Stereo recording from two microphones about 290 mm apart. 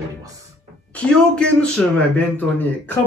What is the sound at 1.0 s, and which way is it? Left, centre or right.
Speech, centre.